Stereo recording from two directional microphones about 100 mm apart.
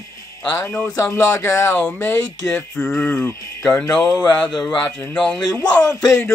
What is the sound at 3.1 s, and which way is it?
Music, 15° left (ahead or behind).